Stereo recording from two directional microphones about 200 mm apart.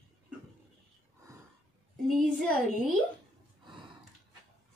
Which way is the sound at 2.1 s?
Centre (ahead or behind).